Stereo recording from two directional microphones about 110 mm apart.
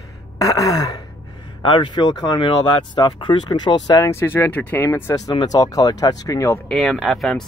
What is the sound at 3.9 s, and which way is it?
Speech, 30° left (ahead or behind).